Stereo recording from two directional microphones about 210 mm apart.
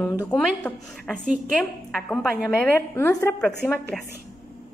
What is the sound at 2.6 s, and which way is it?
A woman's voice, 15° left (ahead or behind).